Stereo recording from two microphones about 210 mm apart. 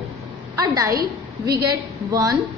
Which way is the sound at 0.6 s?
15° right (ahead or behind).